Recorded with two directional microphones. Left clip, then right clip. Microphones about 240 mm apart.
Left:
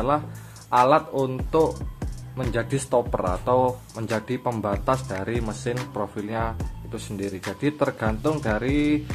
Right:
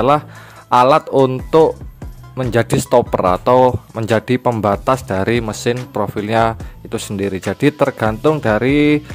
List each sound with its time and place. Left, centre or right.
0.7 s speech: right